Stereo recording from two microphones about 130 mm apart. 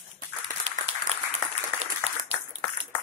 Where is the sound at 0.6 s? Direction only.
55° right (ahead or behind).